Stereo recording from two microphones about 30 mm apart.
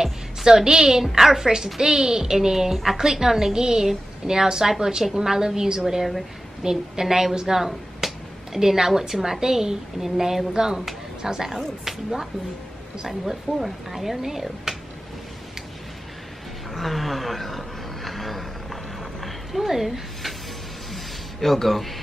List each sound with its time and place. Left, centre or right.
0.5 s a woman's voice: right
10.5 s a woman's voice: right; by 14.8 s centre
16.7 s a sound: centre